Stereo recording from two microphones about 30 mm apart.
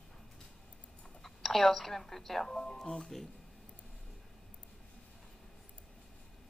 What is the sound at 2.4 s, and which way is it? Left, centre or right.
Speech, left.